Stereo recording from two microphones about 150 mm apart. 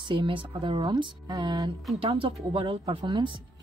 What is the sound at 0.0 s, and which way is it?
Speech, 35° right (ahead or behind).